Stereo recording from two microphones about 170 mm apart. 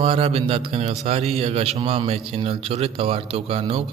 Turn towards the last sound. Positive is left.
turn(degrees=-35)  # may be behind; listen again after turning